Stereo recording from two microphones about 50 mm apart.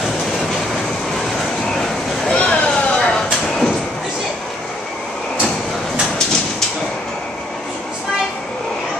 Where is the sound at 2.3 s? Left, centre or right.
Left.